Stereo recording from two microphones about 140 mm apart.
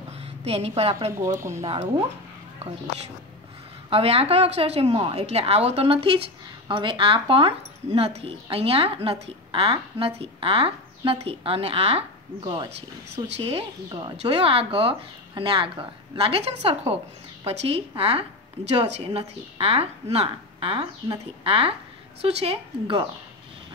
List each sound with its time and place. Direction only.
0.4 s speech: 50° right (ahead or behind)
1.4 s speech: 20° right (ahead or behind)
3.9 s speech: 45° right (ahead or behind)